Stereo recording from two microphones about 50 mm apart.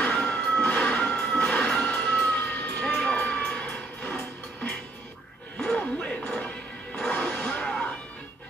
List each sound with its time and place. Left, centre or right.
0.0 s a sound: left
0.7 s music: left
1.1 s music: centre
1.5 s vehicle: left
2.8 s a sound: left
3.3 s music: left
5.6 s music: centre
7.1 s roaring cats: left